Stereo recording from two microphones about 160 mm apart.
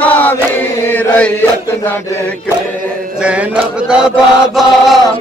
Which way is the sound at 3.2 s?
5° right (ahead or behind).